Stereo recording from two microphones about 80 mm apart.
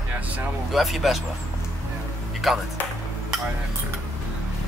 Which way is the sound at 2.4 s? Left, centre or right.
Centre.